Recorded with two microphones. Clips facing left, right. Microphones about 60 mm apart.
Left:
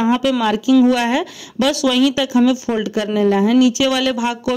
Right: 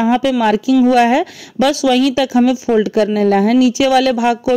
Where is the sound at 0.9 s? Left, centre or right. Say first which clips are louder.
Right 6 dB; right.